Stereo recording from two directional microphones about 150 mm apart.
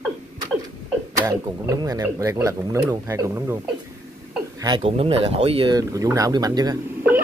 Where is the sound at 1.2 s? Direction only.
20° right (ahead or behind).